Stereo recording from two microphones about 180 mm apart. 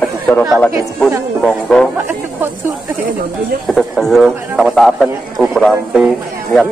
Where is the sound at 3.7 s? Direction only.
Centre (ahead or behind).